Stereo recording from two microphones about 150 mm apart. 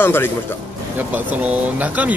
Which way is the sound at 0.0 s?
15° left (ahead or behind).